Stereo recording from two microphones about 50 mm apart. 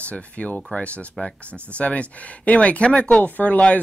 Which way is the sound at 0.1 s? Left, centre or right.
Left.